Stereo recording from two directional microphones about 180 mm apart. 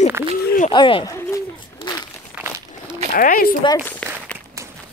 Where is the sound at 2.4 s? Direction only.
10° right (ahead or behind).